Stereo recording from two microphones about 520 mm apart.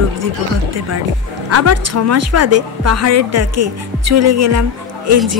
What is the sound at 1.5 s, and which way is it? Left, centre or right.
A woman's voice, right.